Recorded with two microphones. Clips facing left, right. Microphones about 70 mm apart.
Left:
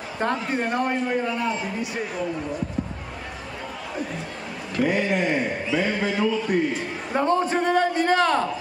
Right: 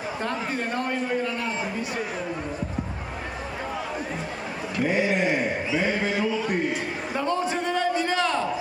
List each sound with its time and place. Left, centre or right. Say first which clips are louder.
0.7 s a man's voice: left 2 dB; left
5.0 s speech: even; centre
7.2 s a sound: left 5 dB; left